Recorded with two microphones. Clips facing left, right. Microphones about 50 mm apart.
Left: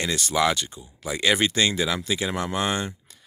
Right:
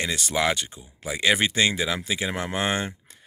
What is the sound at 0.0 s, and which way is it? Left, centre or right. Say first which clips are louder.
Speech: left 2 dB; centre.